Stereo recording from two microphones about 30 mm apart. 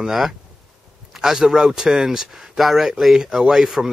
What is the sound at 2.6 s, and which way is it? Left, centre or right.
Speech, centre.